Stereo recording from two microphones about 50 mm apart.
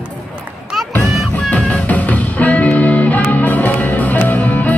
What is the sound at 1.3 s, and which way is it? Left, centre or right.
Music, left.